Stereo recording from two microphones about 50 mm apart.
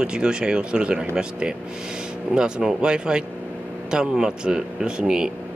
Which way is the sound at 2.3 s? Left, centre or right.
Centre.